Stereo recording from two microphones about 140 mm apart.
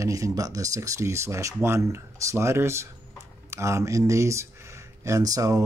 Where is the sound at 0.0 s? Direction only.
25° right (ahead or behind).